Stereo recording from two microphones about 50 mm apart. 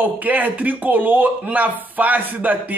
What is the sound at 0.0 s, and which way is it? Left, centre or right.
Speech, right.